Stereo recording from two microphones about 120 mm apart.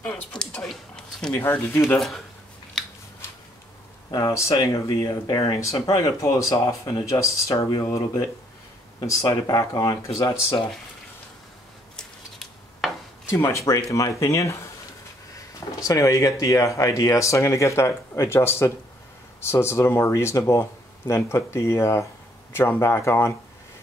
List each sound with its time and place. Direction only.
0.0 s speech: 5° left (ahead or behind)
1.3 s speech: 20° left (ahead or behind)
2.0 s speech: centre (ahead or behind)
2.8 s scissors: 5° left (ahead or behind)
4.1 s speech: 30° left (ahead or behind)
12.0 s a sound: 5° left (ahead or behind)
13.4 s speech: 25° left (ahead or behind)